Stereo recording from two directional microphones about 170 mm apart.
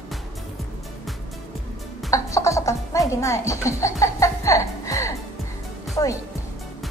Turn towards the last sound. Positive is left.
turn(degrees=20)  # may be behind; listen again after turning